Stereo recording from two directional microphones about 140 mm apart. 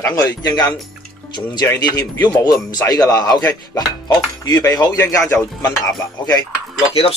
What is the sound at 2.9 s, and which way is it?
Speech, 30° left (ahead or behind).